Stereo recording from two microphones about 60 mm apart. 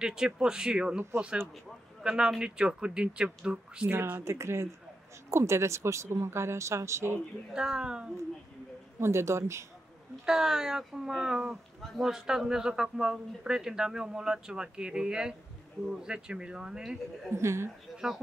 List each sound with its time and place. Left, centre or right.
0.0 s speech: centre
2.0 s speech: centre
3.9 s speech: right
7.5 s speech: centre
9.0 s speech: right
10.2 s speech: centre
17.3 s speech: right
17.9 s speech: centre